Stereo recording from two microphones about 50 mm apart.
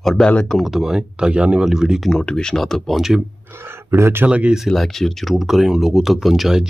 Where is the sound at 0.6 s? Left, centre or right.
Centre; by 1.6 s right.